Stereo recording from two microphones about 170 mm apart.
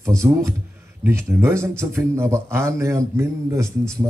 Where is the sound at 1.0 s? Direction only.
15° right (ahead or behind).